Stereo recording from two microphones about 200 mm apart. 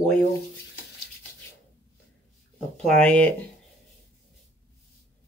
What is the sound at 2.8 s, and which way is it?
Speech, 5° left (ahead or behind).